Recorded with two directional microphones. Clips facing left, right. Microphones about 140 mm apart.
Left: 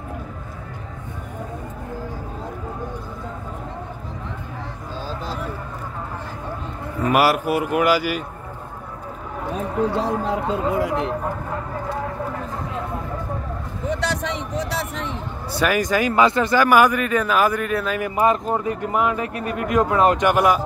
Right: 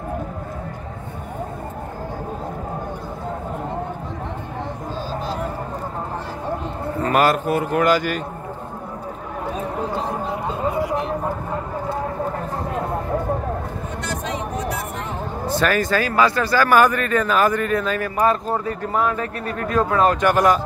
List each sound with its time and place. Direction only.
7.0 s speech: 10° left (ahead or behind)
13.8 s a sound: 80° left
15.5 s speech: 10° left (ahead or behind)
18.0 s speech: 15° left (ahead or behind)